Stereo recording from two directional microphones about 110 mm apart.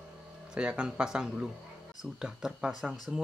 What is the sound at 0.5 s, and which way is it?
Speech, 10° right (ahead or behind).